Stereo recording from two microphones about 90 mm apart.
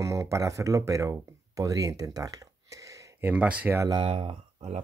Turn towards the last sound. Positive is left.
turn(degrees=-90)